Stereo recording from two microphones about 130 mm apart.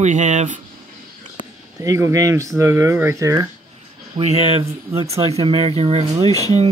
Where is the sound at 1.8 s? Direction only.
20° right (ahead or behind).